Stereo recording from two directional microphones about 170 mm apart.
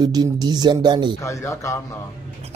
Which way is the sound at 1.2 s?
15° left (ahead or behind).